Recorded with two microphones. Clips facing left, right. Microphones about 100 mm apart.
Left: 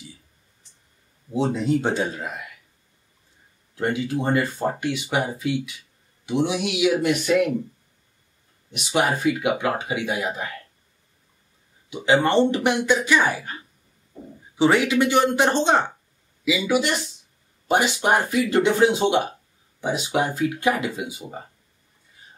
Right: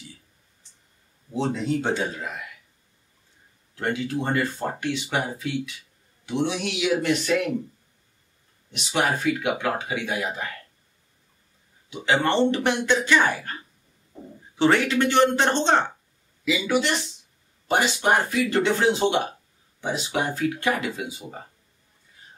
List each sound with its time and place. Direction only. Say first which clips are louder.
1.3 s speech: left 3 dB; 10° left (ahead or behind)
3.7 s speech: left 2 dB; 15° left (ahead or behind)
8.7 s speech: left 2 dB; 15° left (ahead or behind)
11.9 s speech: left 3 dB; 15° left (ahead or behind)
14.6 s speech: left 2 dB; 10° left (ahead or behind)